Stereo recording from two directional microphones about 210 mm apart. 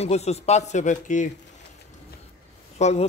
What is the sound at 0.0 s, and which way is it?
A man's voice, 30° left (ahead or behind).